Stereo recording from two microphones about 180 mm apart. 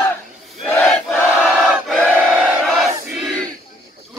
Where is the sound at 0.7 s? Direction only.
5° left (ahead or behind).